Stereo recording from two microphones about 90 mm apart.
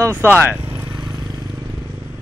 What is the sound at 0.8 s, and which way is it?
Vehicle, 50° right (ahead or behind).